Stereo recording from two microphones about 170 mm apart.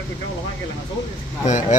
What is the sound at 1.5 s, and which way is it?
Speech, 45° left (ahead or behind).